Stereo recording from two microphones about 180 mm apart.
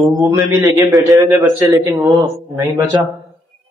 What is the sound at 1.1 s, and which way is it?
A man's voice, 20° right (ahead or behind).